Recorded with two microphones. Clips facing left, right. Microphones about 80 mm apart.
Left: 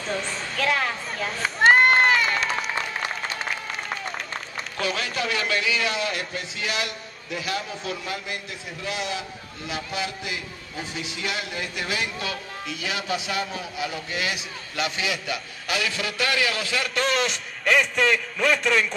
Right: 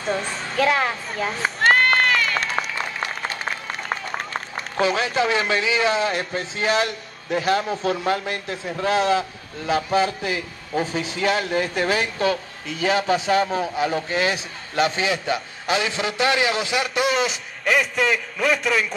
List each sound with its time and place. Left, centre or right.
0.7 s a man's voice: centre
1.7 s run: centre
2.3 s run: right
3.9 s a sound: right
4.8 s a man's voice: right
16.8 s a man's voice: centre